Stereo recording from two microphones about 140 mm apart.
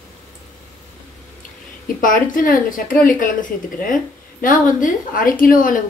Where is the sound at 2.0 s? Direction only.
75° left (ahead or behind).